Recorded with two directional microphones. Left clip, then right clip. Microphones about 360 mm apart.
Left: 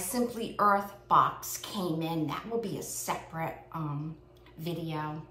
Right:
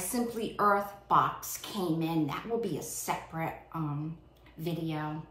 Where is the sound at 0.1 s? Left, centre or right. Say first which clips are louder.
Left 2 dB; centre.